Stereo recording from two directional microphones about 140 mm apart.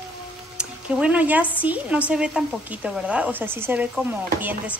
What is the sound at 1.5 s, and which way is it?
A woman's voice, 10° right (ahead or behind).